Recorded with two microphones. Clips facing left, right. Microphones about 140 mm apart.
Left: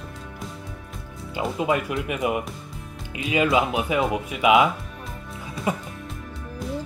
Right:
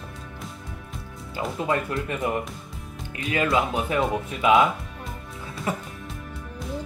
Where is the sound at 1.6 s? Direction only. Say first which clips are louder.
Left 2 dB; 10° left (ahead or behind).